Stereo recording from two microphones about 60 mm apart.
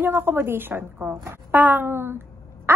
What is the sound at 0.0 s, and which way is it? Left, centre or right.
A woman's voice, right.